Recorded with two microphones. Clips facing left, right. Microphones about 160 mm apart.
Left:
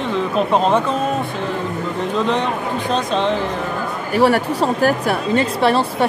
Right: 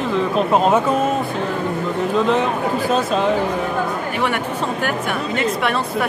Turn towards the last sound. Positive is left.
turn(degrees=30)  # may be behind; listen again after turning